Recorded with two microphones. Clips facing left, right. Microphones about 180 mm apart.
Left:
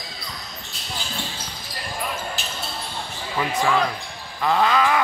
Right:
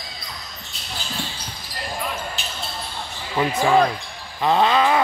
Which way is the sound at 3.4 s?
25° right (ahead or behind).